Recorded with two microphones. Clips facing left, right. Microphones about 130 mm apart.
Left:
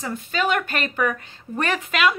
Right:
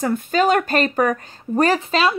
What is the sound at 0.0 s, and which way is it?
A woman's voice, 45° right (ahead or behind).